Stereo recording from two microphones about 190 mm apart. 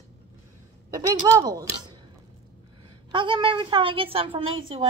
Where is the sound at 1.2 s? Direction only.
20° right (ahead or behind).